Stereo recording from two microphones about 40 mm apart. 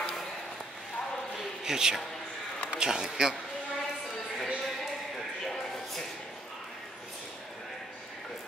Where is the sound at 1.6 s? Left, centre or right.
Centre.